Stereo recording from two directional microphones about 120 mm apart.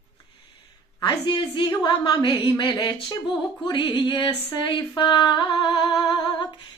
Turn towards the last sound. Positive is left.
turn(degrees=40)  # may be behind; listen again after turning